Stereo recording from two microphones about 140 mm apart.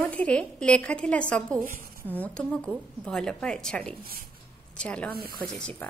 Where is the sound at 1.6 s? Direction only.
90° right.